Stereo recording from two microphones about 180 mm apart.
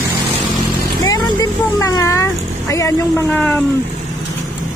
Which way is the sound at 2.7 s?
15° left (ahead or behind).